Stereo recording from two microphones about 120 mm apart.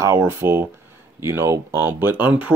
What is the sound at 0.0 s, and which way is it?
Speech, 25° right (ahead or behind).